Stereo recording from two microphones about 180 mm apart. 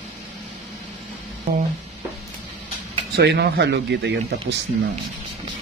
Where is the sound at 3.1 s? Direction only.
65° right (ahead or behind).